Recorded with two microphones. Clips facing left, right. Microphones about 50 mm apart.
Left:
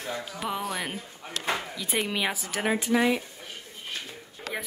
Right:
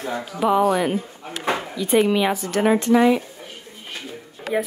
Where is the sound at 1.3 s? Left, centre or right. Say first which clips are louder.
Right 5 dB; centre.